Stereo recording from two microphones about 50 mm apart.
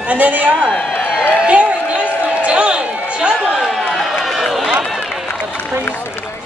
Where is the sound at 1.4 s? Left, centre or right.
Right.